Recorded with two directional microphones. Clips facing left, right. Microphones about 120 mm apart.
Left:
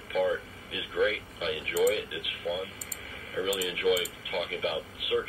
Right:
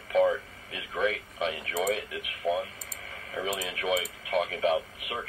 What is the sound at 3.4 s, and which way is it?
Speech, 45° right (ahead or behind).